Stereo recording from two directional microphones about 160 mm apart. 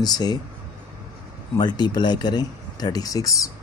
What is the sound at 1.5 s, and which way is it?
Speech, 25° left (ahead or behind).